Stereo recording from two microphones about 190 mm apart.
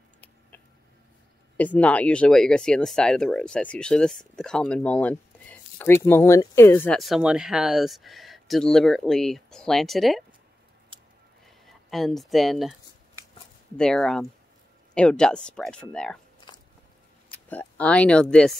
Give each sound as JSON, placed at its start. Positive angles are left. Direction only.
{"t": 1.6, "sound": "speech", "side_deg": 10}
{"t": 7.0, "sound": "speech", "side_deg": -5}
{"t": 11.4, "sound": "speech", "side_deg": 0}
{"t": 13.7, "sound": "speech", "side_deg": 5}
{"t": 16.3, "sound": "biting", "side_deg": 25}
{"t": 17.3, "sound": "speech", "side_deg": 10}